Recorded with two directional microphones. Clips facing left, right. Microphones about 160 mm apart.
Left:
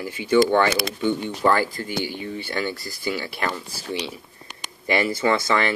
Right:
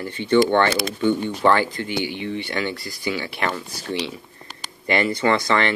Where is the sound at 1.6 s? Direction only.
40° left (ahead or behind).